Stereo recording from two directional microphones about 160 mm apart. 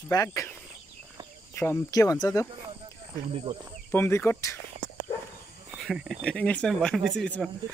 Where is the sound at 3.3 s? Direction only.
35° right (ahead or behind).